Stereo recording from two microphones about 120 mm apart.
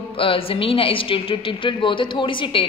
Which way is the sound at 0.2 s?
50° left (ahead or behind).